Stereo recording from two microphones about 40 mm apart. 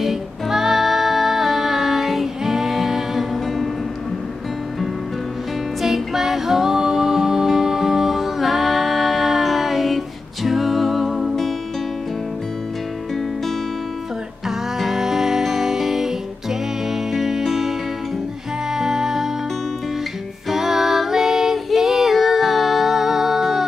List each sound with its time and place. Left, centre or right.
0.0 s music: centre
5.8 s music: centre
14.8 s music: centre
20.4 s music: centre